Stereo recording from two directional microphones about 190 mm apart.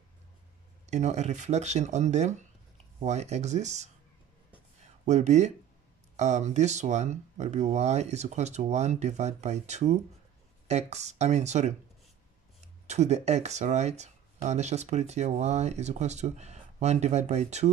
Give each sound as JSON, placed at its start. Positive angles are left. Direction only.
{"t": 0.8, "sound": "speech", "side_deg": -35}
{"t": 5.0, "sound": "speech", "side_deg": -35}
{"t": 12.8, "sound": "speech", "side_deg": -35}